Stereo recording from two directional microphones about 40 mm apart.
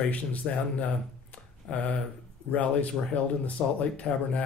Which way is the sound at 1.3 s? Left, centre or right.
Left.